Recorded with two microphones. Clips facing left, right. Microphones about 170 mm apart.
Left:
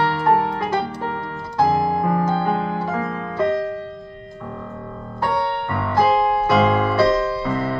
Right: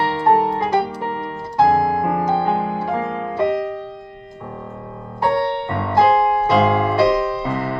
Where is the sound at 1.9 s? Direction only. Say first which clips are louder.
Right 1 dB; 15° right (ahead or behind).